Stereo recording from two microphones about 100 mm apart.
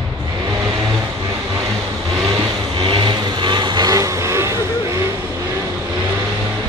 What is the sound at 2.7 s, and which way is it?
Vehicle, 50° right (ahead or behind).